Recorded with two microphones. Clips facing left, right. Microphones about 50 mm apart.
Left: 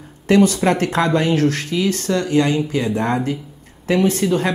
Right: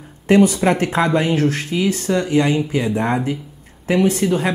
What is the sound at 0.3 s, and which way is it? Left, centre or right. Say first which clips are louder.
Speech: right 1 dB; centre.